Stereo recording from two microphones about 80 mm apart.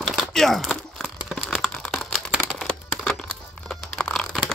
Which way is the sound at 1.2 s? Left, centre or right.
Centre.